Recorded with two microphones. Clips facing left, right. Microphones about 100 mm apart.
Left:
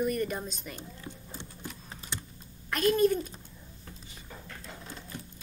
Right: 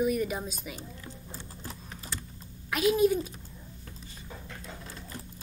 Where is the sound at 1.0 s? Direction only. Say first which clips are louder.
Left 1 dB; 20° left (ahead or behind).